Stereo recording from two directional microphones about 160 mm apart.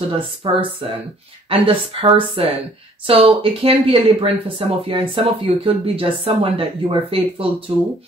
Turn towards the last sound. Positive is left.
turn(degrees=-35)  # may be behind; listen again after turning